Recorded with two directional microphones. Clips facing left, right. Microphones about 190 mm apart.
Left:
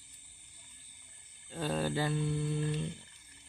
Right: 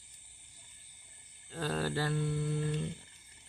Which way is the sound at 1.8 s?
20° left (ahead or behind).